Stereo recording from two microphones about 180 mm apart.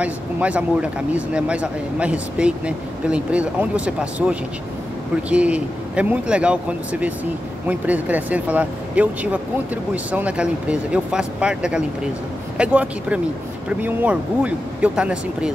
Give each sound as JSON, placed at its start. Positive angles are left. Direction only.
{"t": 0.0, "sound": "speech", "side_deg": -5}